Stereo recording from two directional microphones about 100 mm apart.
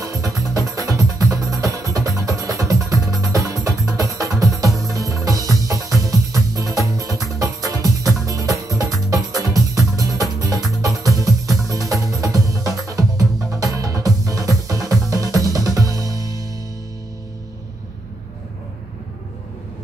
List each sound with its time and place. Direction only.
0.0 s music: 35° right (ahead or behind)